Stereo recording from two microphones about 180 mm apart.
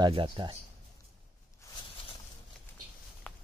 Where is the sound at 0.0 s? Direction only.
25° right (ahead or behind).